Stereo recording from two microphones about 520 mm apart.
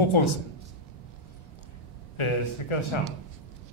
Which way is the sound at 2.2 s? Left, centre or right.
Left.